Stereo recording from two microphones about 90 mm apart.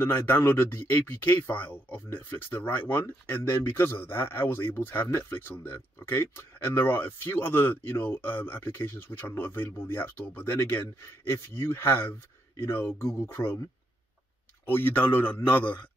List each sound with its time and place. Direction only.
0.0 s speech: 25° left (ahead or behind)
14.7 s speech: 25° left (ahead or behind)